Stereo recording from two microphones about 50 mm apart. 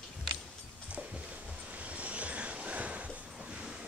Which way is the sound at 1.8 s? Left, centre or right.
Right.